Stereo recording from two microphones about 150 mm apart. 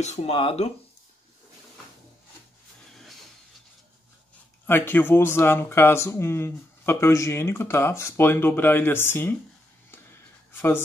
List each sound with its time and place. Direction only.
0.0 s speech: 45° left (ahead or behind)
4.6 s speech: 15° left (ahead or behind)
10.5 s a sound: 15° left (ahead or behind)